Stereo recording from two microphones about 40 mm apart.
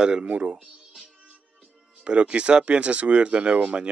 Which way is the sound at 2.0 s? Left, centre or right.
Right.